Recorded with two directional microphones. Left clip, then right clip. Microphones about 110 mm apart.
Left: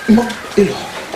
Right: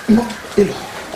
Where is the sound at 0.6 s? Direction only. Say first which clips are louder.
Left 1 dB; 5° left (ahead or behind).